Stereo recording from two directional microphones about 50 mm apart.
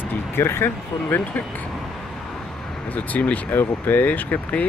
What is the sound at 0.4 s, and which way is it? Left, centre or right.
Speech, left.